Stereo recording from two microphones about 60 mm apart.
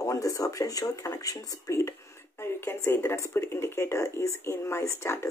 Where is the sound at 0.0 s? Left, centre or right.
Left.